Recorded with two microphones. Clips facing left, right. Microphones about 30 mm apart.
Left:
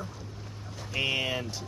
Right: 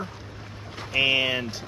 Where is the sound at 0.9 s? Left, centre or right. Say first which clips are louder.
Right 7 dB; right.